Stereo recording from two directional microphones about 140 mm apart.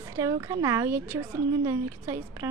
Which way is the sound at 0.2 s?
25° right (ahead or behind).